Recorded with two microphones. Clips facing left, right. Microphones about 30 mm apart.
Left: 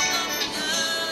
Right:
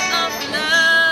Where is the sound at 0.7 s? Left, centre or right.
Right.